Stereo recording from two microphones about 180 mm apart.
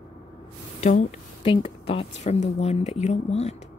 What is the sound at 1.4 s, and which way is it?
Speech, 30° left (ahead or behind).